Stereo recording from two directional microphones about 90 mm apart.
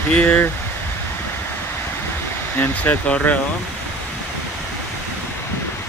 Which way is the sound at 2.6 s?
15° left (ahead or behind).